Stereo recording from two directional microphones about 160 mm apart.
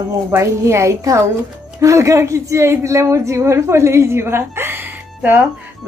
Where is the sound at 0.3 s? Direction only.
15° right (ahead or behind).